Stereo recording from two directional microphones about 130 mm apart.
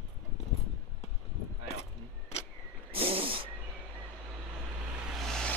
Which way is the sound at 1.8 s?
50° left (ahead or behind).